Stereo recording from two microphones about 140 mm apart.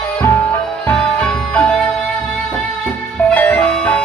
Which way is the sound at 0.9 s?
10° left (ahead or behind).